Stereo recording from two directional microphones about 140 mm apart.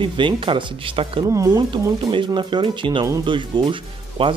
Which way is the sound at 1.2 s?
25° right (ahead or behind).